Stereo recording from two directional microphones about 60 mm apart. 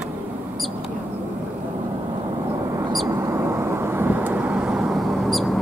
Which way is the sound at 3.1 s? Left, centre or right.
Right.